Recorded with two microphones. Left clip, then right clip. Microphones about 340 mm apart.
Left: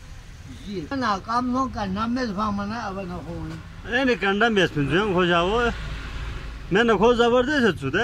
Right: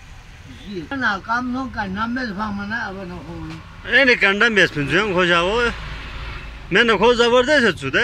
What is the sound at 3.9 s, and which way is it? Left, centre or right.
Speech, centre.